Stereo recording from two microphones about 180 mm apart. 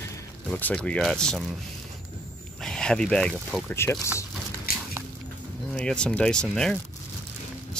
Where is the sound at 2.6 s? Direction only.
5° left (ahead or behind).